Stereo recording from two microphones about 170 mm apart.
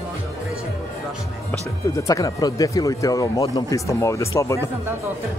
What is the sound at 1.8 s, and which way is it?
Speech, 20° left (ahead or behind).